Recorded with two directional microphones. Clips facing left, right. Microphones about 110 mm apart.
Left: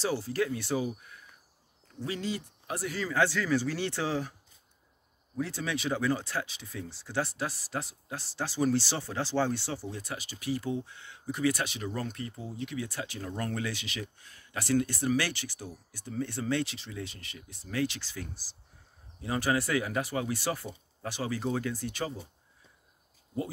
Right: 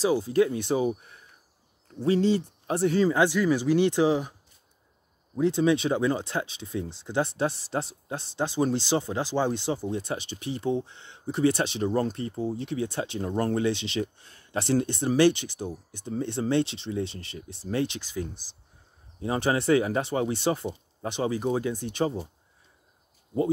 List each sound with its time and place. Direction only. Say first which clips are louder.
0.0 s speech: right 8 dB; 15° right (ahead or behind)
3.2 s speech: right 5 dB; 15° right (ahead or behind)
5.4 s speech: right 10 dB; 20° right (ahead or behind)